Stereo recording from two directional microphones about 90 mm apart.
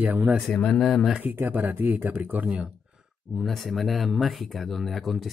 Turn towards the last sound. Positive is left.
turn(degrees=0)  # may be behind; listen again after turning